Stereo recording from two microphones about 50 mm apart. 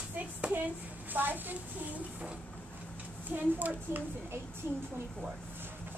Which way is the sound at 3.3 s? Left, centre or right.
Right.